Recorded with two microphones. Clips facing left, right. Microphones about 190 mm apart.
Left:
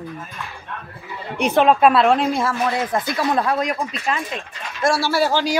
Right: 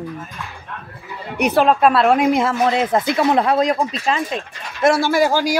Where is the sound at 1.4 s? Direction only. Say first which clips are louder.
Even; 5° right (ahead or behind); by 4.1 s 35° right (ahead or behind).